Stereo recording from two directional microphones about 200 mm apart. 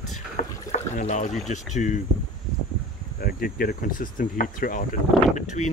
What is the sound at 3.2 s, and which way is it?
Speech, 50° left (ahead or behind).